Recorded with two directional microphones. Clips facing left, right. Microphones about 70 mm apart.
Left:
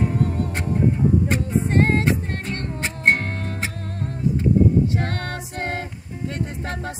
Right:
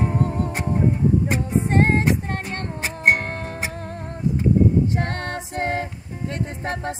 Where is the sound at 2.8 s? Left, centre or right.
Centre.